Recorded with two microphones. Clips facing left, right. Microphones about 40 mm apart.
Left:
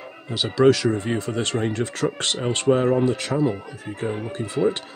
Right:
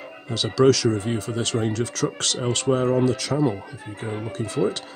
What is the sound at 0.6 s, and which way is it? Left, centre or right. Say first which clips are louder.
Speech: left 1 dB; left.